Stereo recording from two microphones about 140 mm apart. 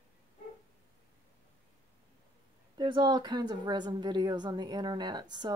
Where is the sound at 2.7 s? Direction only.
30° right (ahead or behind).